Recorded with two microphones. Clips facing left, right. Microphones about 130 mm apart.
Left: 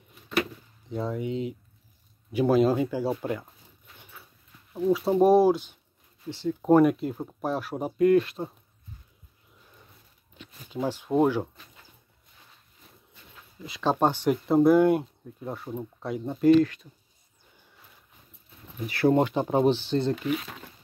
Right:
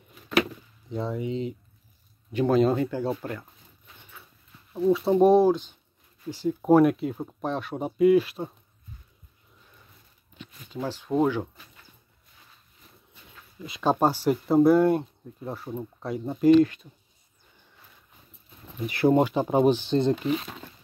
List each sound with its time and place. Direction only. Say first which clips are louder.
0.8 s speech: even; centre (ahead or behind)
4.9 s speech: right 1 dB; 5° left (ahead or behind)
6.3 s speech: right 1 dB; 10° right (ahead or behind)
10.7 s speech: left 2 dB; 10° left (ahead or behind)
13.7 s speech: right 1 dB; 15° right (ahead or behind)
16.5 s speech: right 2 dB; 20° right (ahead or behind)
18.9 s speech: right 1 dB; 15° right (ahead or behind)
20.2 s speech: right 2 dB; 30° right (ahead or behind)